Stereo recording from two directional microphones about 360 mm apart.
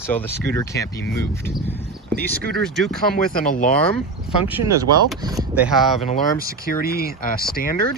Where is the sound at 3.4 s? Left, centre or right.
Left.